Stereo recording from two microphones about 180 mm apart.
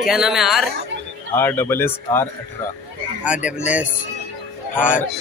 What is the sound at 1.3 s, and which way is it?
Speech, 10° left (ahead or behind).